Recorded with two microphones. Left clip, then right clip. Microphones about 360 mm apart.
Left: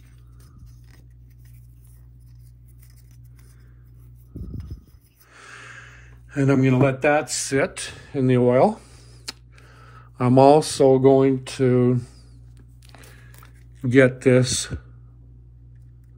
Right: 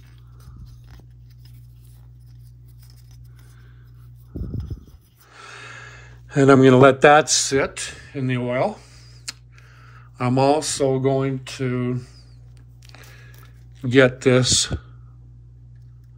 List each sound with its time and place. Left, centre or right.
5.3 s a sound: centre
7.3 s speech: centre
12.9 s biting: centre
13.7 s speech: centre